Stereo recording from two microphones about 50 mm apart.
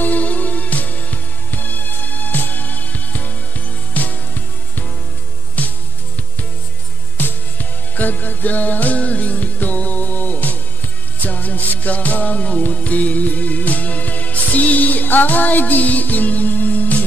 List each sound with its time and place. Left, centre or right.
0.0 s music: left
5.6 s music: left
7.2 s music: left